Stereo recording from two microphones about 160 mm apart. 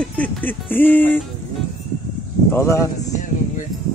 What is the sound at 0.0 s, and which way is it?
Speech, 10° left (ahead or behind).